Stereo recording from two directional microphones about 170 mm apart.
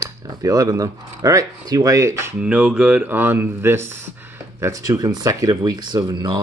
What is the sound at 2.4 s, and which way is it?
A man's voice, 5° right (ahead or behind).